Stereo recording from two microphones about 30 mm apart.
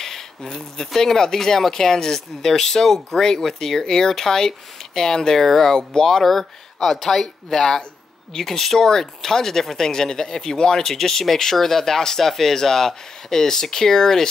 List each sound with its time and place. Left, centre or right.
0.4 s speech: centre